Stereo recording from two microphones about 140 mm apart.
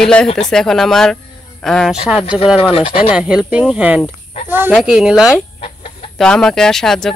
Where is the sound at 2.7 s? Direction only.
40° left (ahead or behind).